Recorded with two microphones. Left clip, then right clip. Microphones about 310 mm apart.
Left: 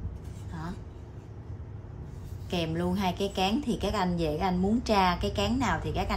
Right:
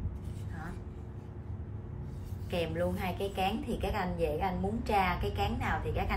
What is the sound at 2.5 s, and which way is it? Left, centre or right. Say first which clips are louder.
A woman's voice: left 2 dB; centre.